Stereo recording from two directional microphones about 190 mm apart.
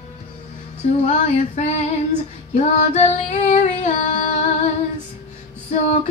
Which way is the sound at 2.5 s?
40° left (ahead or behind).